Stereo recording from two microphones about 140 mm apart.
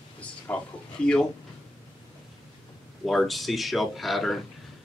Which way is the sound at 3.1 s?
Centre (ahead or behind).